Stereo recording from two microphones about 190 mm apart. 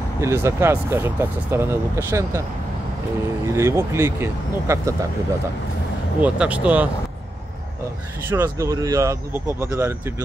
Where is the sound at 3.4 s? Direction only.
15° right (ahead or behind).